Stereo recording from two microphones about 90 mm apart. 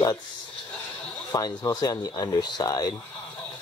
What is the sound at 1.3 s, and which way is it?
Speech, 45° left (ahead or behind).